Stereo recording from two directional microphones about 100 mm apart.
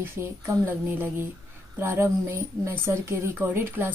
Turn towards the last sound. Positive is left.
turn(degrees=-25)  # may be behind; listen again after turning